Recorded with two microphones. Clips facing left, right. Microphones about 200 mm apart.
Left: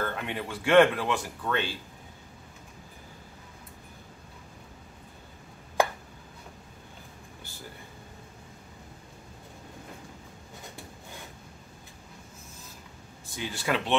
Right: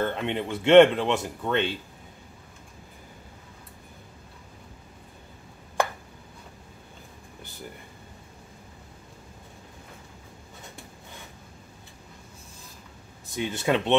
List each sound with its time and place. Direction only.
0.0 s speech: 25° right (ahead or behind)
13.4 s speech: 25° right (ahead or behind)